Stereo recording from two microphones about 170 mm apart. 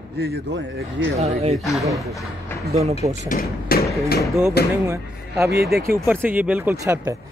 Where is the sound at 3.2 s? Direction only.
60° left (ahead or behind).